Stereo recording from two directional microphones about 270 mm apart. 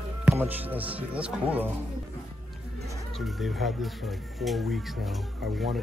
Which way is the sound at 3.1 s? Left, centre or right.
Centre.